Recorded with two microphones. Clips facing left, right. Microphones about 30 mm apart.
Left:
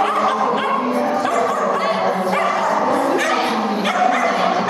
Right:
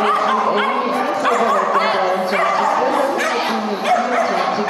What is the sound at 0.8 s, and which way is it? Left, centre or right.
Bow-wow, right.